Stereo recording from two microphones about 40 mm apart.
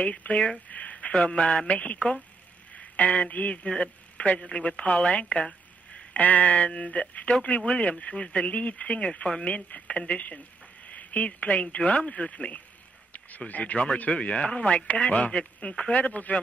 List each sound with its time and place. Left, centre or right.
0.0 s speech: left
0.7 s a sound: left
1.2 s a man's voice: left
6.1 s speech: left
10.9 s a sound: left
11.2 s speech: left
16.0 s speech: left